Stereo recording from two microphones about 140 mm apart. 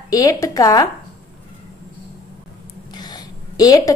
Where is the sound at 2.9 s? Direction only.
30° left (ahead or behind).